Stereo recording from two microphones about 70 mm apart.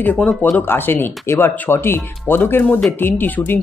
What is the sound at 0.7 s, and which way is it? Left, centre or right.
Speech, left.